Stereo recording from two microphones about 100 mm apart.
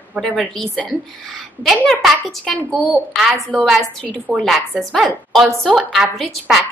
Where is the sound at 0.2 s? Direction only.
5° left (ahead or behind).